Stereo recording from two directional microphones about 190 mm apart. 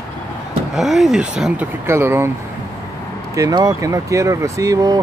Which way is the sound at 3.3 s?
20° right (ahead or behind).